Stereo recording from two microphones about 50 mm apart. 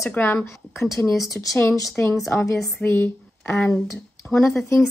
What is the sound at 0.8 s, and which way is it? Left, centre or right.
Speech, left.